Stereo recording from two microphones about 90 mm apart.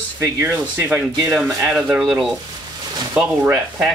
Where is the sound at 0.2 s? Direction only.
30° right (ahead or behind).